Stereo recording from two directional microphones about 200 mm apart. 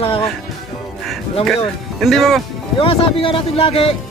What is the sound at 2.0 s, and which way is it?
Speech, centre (ahead or behind).